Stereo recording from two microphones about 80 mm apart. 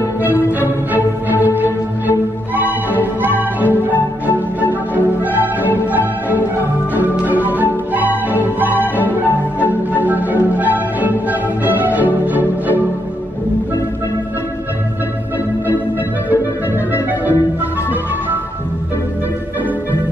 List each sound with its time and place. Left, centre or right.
0.2 s music: right
4.9 s music: right
10.0 s music: right
16.9 s music: right